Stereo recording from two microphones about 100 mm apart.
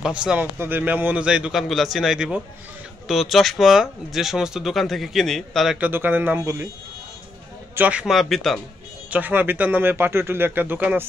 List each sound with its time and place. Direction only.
0.0 s a man's voice: 10° right (ahead or behind)
5.8 s a man's voice: 20° right (ahead or behind)
6.4 s speech: 30° right (ahead or behind)
7.7 s speech: 15° right (ahead or behind); by 8.5 s centre (ahead or behind)
9.1 s speech: 15° right (ahead or behind)